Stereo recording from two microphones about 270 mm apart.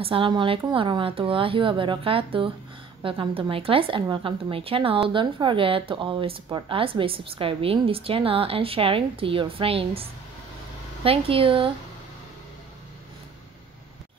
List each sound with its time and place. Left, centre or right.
0.0 s speech: centre
11.1 s speech: centre